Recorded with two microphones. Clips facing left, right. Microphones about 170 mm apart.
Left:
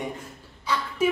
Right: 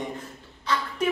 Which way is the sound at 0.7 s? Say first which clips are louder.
Even; 10° left (ahead or behind).